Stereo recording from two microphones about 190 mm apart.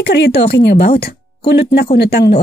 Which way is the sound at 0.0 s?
65° left (ahead or behind).